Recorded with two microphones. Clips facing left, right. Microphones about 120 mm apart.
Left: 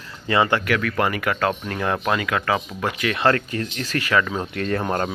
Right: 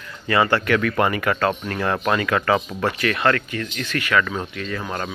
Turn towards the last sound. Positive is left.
turn(degrees=50)  # may be behind; listen again after turning